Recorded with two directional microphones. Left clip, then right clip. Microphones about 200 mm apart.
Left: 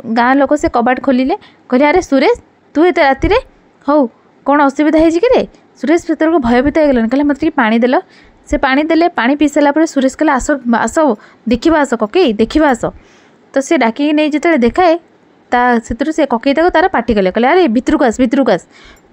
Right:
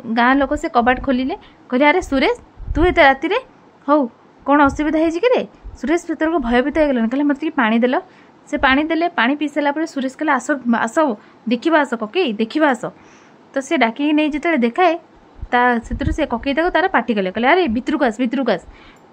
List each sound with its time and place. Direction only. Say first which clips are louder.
0.1 s a woman's voice: left 5 dB; 25° left (ahead or behind)